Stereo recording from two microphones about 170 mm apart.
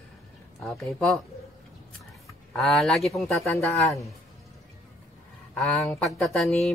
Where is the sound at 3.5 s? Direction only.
15° left (ahead or behind).